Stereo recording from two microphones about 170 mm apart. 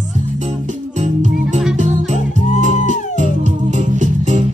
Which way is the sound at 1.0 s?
45° right (ahead or behind).